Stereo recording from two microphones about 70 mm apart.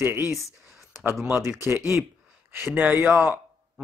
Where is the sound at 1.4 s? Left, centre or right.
Right.